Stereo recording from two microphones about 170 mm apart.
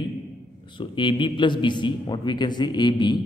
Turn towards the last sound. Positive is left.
turn(degrees=25)  # may be behind; listen again after turning